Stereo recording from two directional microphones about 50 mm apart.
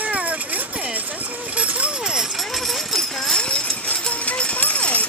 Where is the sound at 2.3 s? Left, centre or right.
Centre.